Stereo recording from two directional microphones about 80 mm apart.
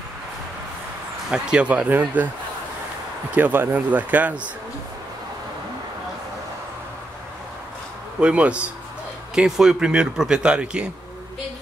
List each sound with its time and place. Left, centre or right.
1.3 s speech: centre
3.3 s speech: right
8.2 s speech: centre